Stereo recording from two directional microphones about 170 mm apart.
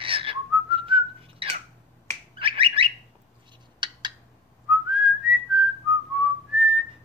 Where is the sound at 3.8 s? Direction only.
25° right (ahead or behind).